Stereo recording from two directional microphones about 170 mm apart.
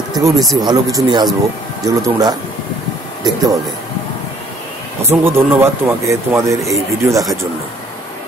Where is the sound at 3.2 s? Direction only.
25° right (ahead or behind).